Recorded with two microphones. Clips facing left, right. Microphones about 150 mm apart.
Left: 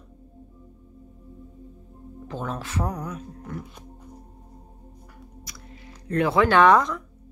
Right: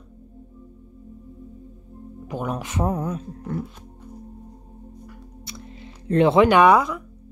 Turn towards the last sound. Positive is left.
turn(degrees=-10)  # may be behind; listen again after turning